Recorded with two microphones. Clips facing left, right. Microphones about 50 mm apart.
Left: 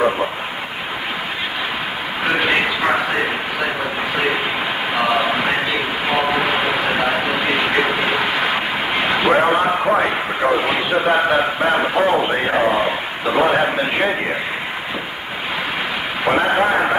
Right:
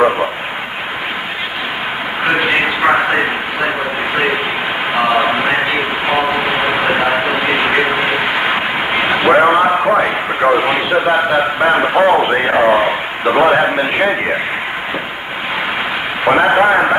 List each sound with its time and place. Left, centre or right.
2.2 s a sound: centre
4.9 s train: centre
9.6 s a sound: centre
10.4 s a man's voice: right
11.1 s a man's voice: centre
11.6 s a man's voice: centre
16.3 s a man's voice: right